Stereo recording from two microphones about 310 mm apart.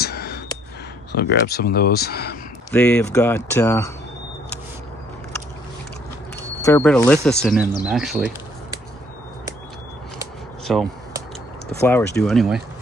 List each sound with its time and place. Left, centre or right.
0.0 s a sound: left
1.1 s speech: left
2.7 s speech: centre
6.6 s speech: centre
10.7 s speech: centre